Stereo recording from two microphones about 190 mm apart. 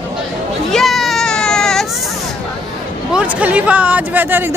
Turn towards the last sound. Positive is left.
turn(degrees=-10)  # may be behind; listen again after turning